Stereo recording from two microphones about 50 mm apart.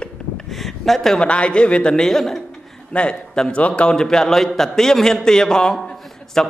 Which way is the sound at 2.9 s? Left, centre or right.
Left.